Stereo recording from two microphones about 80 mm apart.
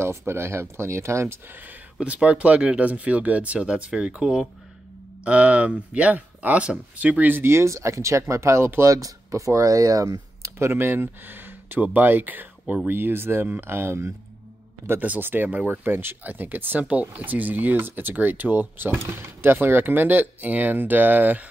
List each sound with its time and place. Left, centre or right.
0.2 s speech: right